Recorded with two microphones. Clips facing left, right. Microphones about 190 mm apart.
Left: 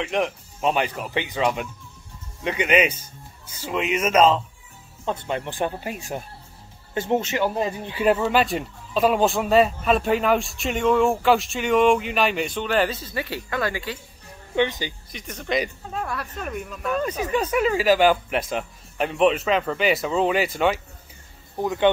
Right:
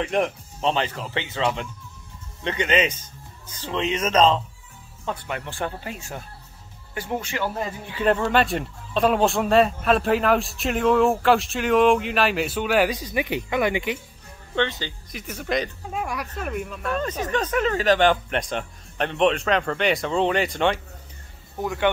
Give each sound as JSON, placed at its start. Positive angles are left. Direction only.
{"t": 0.0, "sound": "speech", "side_deg": 0}
{"t": 5.0, "sound": "speech", "side_deg": 20}
{"t": 8.0, "sound": "speech", "side_deg": 5}
{"t": 14.5, "sound": "speech", "side_deg": 15}
{"t": 15.0, "sound": "speech", "side_deg": -5}
{"t": 21.5, "sound": "speech", "side_deg": 20}